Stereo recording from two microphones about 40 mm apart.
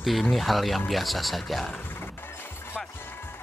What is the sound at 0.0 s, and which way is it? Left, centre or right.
Speech, centre.